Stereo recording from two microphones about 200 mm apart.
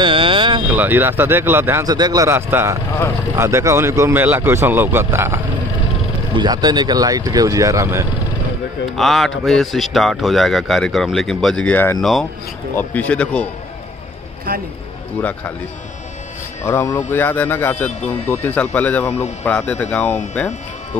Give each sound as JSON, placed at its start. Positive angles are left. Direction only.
{"t": 0.0, "sound": "vehicle", "side_deg": -25}
{"t": 0.7, "sound": "speech", "side_deg": -10}
{"t": 8.8, "sound": "speech", "side_deg": 0}
{"t": 15.1, "sound": "speech", "side_deg": 10}
{"t": 16.6, "sound": "speech", "side_deg": 15}